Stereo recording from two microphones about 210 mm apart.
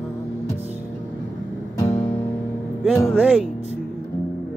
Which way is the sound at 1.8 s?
10° left (ahead or behind).